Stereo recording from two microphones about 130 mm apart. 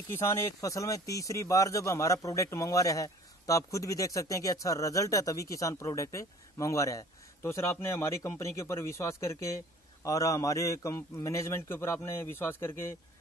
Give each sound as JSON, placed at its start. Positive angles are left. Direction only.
{"t": 0.1, "sound": "a man's voice", "side_deg": 20}